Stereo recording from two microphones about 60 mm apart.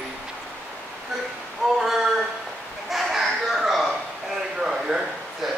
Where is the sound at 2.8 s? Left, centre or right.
Centre.